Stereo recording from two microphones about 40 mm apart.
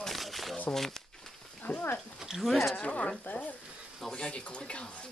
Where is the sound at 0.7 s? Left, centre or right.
Centre.